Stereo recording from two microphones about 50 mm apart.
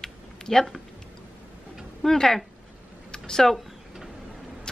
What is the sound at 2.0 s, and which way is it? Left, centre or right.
Speech, centre.